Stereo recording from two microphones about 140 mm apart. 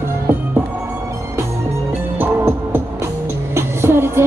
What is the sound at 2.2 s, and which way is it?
Music, 15° right (ahead or behind).